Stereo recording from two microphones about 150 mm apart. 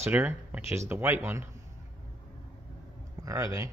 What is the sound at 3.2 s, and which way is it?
Speech, 20° right (ahead or behind).